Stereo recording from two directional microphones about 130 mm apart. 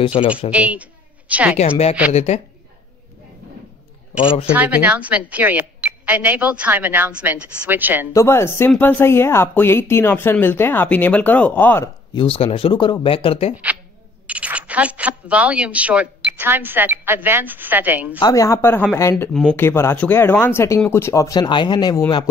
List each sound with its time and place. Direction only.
0.0 s speech: 40° left (ahead or behind)
0.5 s a woman's voice: 10° right (ahead or behind)
2.1 s speech: 55° left (ahead or behind)
4.5 s a woman's voice: 10° right (ahead or behind)
8.1 s speech: 20° left (ahead or behind)
12.2 s speech: 45° left (ahead or behind)
14.2 s speech: 10° right (ahead or behind)
18.2 s speech: 25° left (ahead or behind)